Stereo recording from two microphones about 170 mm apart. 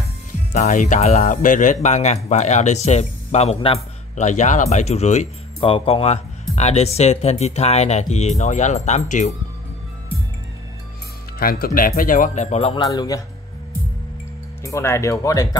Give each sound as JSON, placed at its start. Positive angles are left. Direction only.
{"t": 0.5, "sound": "speech", "side_deg": 50}
{"t": 11.3, "sound": "speech", "side_deg": 60}
{"t": 12.8, "sound": "a man's voice", "side_deg": 20}
{"t": 14.6, "sound": "speech", "side_deg": 15}